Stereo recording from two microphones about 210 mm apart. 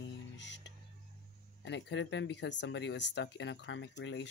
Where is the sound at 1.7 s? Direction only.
60° left (ahead or behind).